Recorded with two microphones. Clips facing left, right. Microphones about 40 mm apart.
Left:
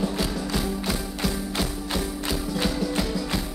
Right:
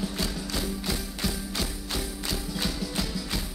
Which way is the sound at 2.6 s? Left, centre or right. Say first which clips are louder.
Left 6 dB; centre.